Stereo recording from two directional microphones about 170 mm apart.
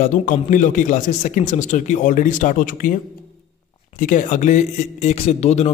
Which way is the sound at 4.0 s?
50° left (ahead or behind).